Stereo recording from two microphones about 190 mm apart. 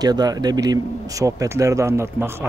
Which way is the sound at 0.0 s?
20° right (ahead or behind).